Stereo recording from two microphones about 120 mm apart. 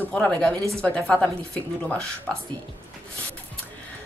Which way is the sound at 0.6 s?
25° right (ahead or behind).